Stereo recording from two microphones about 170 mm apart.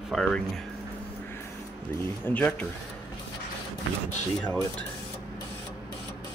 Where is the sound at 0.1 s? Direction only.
Centre (ahead or behind).